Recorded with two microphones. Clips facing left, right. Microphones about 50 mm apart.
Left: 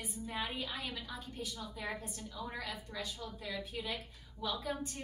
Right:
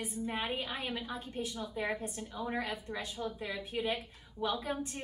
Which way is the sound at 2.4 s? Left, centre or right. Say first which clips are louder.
Right 7 dB; right.